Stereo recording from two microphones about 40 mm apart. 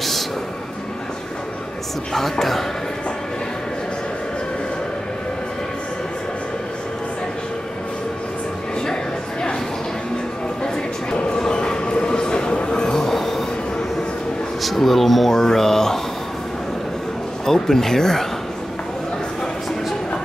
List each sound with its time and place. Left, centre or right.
2.1 s speech: centre
10.6 s bow-wow: left
13.0 s train: centre
14.6 s speech: centre
17.5 s speech: centre